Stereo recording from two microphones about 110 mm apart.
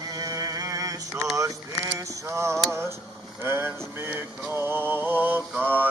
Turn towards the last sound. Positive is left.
turn(degrees=-15)  # may be behind; listen again after turning